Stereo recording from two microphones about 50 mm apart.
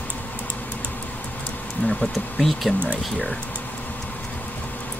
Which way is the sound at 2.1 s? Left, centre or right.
Centre.